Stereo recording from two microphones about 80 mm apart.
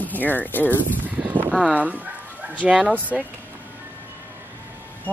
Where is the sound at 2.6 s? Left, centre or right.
Centre.